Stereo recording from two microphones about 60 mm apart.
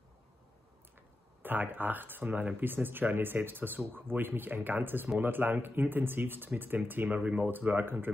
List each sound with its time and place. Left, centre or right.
1.4 s speech: right
7.1 s speech: right